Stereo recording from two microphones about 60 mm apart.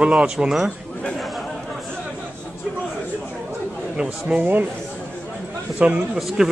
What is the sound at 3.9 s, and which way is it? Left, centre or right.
Speech, centre.